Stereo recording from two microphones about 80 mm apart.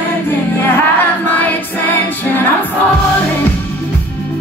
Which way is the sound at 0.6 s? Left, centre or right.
Left.